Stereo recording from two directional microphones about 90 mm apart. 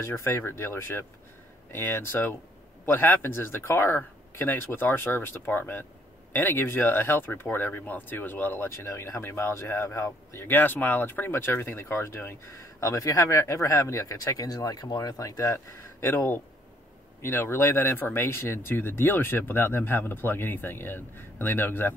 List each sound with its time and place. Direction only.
0.0 s speech: 30° left (ahead or behind)
8.8 s speech: 30° left (ahead or behind)